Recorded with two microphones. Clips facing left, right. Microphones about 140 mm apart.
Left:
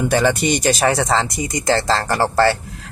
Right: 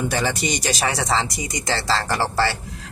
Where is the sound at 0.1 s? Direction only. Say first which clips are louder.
Left 7 dB; 55° left (ahead or behind).